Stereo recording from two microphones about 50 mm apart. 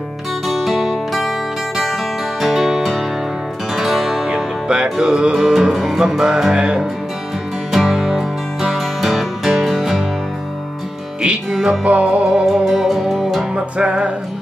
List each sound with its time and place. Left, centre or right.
0.5 s music: centre
2.4 s music: centre
4.4 s music: centre
7.7 s music: centre
11.8 s music: right
12.3 s music: centre
13.6 s music: right